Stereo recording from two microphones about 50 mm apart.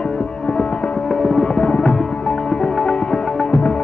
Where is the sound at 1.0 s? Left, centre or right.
Centre.